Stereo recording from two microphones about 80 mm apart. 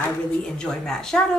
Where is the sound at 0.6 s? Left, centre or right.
Centre.